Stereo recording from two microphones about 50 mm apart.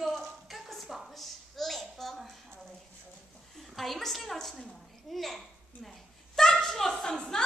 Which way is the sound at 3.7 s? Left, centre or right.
Centre.